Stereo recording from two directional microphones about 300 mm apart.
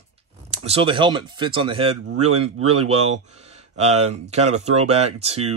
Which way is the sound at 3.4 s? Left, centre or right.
Right.